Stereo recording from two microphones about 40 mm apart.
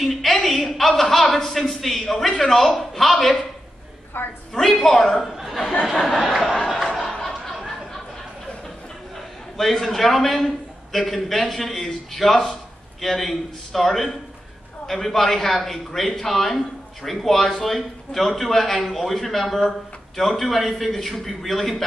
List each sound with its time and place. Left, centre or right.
0.0 s a man's voice: centre
4.1 s a woman's voice: left
4.6 s a woman's voice: centre
7.1 s a sound: centre
9.6 s a man's voice: centre